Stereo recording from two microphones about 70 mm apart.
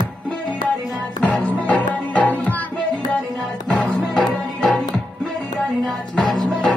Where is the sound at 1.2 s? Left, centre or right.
Centre.